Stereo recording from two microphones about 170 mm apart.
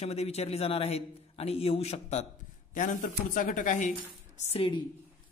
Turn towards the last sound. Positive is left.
turn(degrees=30)  # may be behind; listen again after turning